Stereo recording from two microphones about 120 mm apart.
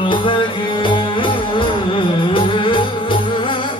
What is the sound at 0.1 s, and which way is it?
Music, 45° left (ahead or behind).